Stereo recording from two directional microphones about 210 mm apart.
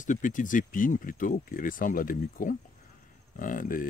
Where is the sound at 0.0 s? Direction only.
40° left (ahead or behind).